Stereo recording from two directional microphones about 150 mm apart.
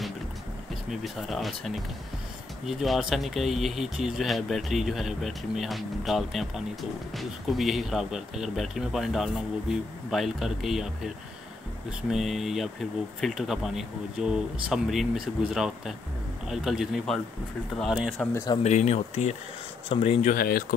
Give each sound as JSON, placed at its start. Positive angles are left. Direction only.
{"t": 1.0, "sound": "speech", "side_deg": 0}
{"t": 12.1, "sound": "speech", "side_deg": 0}
{"t": 18.2, "sound": "speech", "side_deg": 20}
{"t": 18.6, "sound": "speech", "side_deg": 50}
{"t": 20.2, "sound": "speech", "side_deg": 75}